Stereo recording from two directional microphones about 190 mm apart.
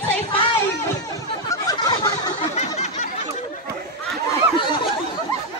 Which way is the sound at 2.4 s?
35° left (ahead or behind).